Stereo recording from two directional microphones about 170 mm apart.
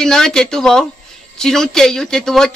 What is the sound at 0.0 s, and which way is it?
Speech, 5° left (ahead or behind).